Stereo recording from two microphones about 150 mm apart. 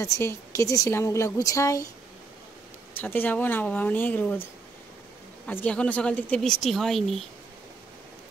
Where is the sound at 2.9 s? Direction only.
15° left (ahead or behind).